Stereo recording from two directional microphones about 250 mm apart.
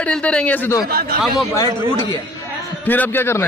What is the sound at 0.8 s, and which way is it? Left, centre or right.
Speech, right.